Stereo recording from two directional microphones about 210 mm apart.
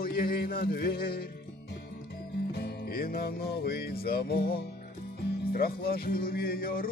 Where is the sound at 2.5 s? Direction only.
50° left (ahead or behind).